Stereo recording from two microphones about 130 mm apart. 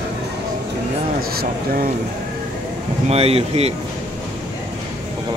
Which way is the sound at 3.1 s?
50° right (ahead or behind).